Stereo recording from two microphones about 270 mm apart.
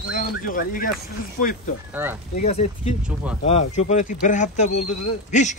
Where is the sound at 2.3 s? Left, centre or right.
Left.